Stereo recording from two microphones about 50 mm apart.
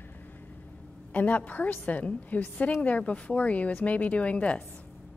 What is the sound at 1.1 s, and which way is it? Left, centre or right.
A woman's voice, left.